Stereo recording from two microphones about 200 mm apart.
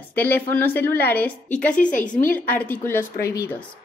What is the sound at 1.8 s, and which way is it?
Speech, 40° left (ahead or behind).